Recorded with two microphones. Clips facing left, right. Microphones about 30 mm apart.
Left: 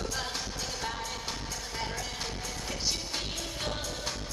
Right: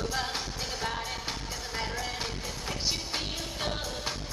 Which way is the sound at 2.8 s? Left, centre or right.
Centre.